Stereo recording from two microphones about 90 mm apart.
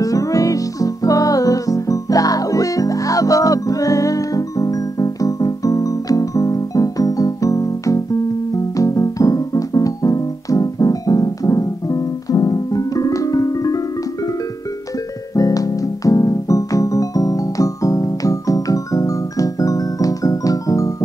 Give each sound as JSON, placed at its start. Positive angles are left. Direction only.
{"t": 0.0, "sound": "music", "side_deg": 40}
{"t": 15.3, "sound": "music", "side_deg": 40}